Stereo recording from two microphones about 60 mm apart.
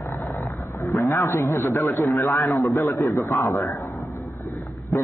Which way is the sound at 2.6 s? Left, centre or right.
Left.